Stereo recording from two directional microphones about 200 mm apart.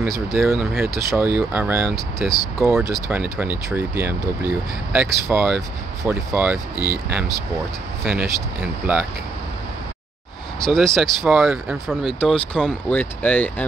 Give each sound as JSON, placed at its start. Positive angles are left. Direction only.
{"t": 0.3, "sound": "speech", "side_deg": 0}
{"t": 2.1, "sound": "speech", "side_deg": 0}
{"t": 10.8, "sound": "speech", "side_deg": 0}